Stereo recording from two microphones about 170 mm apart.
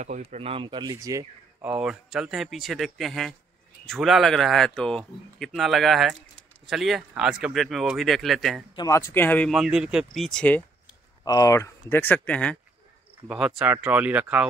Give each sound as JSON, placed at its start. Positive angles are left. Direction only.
{"t": 0.0, "sound": "speech", "side_deg": -45}
{"t": 1.7, "sound": "speech", "side_deg": -5}
{"t": 8.7, "sound": "speech", "side_deg": 20}
{"t": 9.5, "sound": "speech", "side_deg": -5}
{"t": 11.2, "sound": "speech", "side_deg": 20}
{"t": 13.6, "sound": "speech", "side_deg": -10}